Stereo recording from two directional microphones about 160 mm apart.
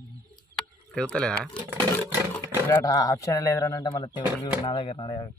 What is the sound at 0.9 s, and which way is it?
Speech, 5° left (ahead or behind).